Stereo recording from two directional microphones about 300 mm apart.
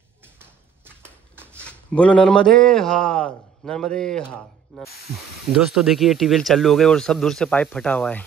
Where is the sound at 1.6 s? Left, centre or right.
Centre.